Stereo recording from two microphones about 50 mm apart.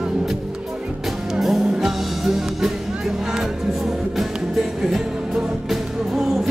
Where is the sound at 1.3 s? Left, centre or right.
Centre.